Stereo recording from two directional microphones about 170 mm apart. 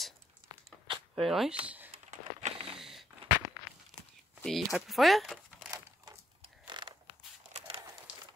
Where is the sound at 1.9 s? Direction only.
40° right (ahead or behind).